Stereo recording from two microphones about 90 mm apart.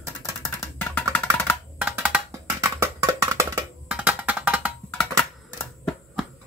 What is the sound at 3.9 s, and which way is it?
Music, 15° right (ahead or behind).